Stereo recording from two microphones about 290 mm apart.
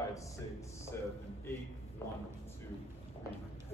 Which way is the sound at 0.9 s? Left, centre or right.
Centre.